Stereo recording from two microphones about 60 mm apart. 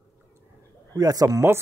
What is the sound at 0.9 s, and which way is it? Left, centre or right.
Speech, right.